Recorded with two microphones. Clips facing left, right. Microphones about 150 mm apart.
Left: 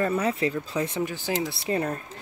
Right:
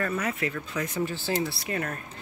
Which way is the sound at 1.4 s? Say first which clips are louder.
Left 4 dB; 30° left (ahead or behind).